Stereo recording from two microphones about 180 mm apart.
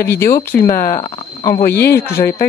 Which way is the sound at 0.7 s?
50° left (ahead or behind).